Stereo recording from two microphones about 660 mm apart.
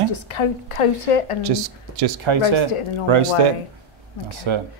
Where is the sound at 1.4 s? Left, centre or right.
Right.